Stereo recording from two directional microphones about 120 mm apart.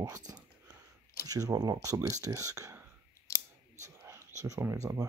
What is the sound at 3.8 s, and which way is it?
Whispering, 25° right (ahead or behind).